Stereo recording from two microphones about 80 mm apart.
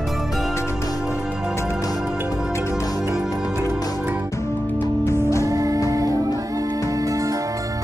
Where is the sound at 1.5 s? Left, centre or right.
Left.